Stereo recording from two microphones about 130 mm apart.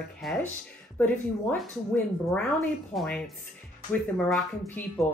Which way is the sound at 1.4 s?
10° left (ahead or behind).